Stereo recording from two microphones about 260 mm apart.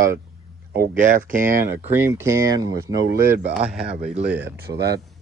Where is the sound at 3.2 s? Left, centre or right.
Right.